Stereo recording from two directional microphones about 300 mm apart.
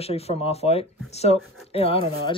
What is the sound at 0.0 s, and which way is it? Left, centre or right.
Speech, left.